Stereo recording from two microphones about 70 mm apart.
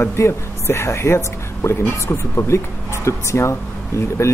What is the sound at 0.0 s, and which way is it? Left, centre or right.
Speech, left.